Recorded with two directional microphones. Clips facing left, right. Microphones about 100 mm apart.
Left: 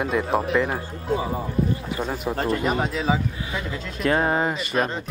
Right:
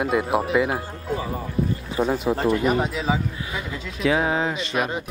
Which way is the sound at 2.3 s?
5° right (ahead or behind).